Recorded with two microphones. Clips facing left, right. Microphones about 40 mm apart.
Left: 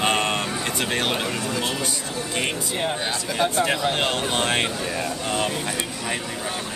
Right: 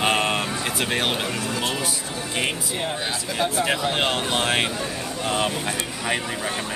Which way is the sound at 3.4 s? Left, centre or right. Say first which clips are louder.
Left 1 dB; centre.